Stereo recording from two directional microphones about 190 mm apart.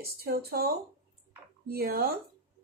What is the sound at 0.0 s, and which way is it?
A woman's voice, 55° right (ahead or behind).